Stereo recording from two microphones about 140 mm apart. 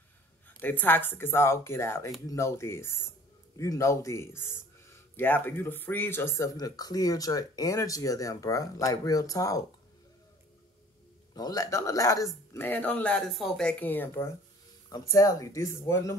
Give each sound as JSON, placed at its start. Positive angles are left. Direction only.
{"t": 0.6, "sound": "speech", "side_deg": 15}
{"t": 11.3, "sound": "speech", "side_deg": 25}